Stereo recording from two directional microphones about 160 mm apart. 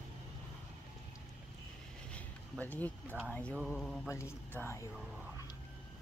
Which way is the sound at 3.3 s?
5° left (ahead or behind).